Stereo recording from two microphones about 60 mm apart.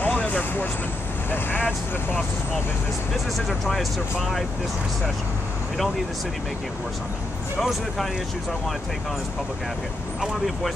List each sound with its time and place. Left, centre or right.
0.0 s vehicle: left
3.3 s speech: centre
10.2 s speech: centre